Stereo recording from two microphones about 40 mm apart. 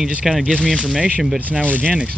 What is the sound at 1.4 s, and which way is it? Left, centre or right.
Speech, right.